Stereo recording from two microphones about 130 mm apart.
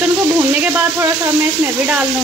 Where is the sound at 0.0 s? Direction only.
10° right (ahead or behind).